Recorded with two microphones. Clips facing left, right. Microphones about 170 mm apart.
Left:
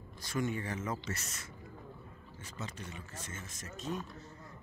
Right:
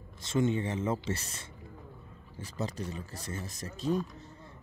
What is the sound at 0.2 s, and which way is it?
Speech, 25° right (ahead or behind).